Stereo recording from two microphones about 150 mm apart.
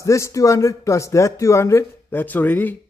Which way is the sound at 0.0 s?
20° left (ahead or behind).